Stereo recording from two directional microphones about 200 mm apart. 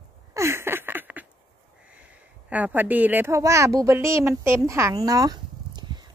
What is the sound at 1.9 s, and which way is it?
A child's voice, 5° right (ahead or behind).